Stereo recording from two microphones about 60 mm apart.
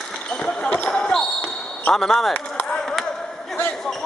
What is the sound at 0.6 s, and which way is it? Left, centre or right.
Speech, left.